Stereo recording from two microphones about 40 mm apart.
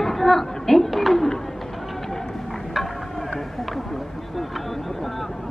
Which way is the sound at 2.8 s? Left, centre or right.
Centre.